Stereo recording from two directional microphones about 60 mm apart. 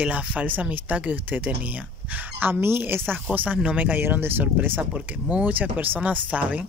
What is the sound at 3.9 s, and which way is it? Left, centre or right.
Speech, right.